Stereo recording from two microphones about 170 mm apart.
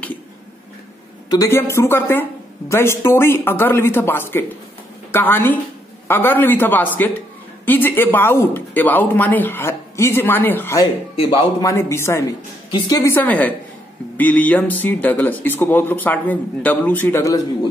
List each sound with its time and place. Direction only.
1.3 s a man's voice: 15° left (ahead or behind)